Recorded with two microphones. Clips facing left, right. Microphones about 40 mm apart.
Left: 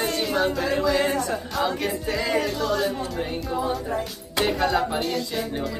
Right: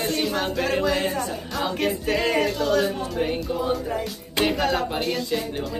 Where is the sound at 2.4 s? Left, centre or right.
Centre.